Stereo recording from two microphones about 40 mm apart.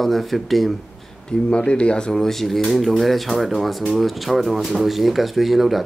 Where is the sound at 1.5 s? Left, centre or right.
Left.